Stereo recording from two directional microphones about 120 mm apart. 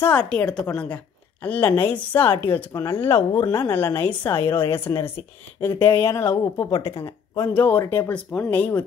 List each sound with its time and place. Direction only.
0.0 s a woman's voice: 10° left (ahead or behind)